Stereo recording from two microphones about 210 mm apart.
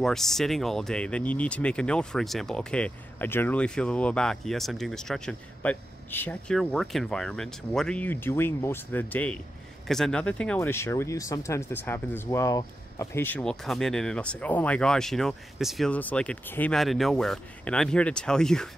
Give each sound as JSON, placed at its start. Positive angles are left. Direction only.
{"t": 0.0, "sound": "speech", "side_deg": 0}